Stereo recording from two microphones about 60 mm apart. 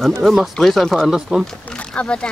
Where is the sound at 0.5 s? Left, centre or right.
Centre.